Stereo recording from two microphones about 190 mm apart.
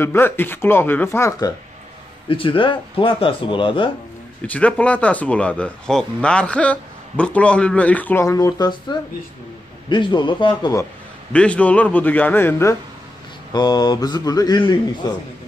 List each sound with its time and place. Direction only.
0.0 s speech: 10° left (ahead or behind)
2.2 s speech: 25° left (ahead or behind)
4.5 s speech: 5° left (ahead or behind)
11.3 s speech: 5° left (ahead or behind)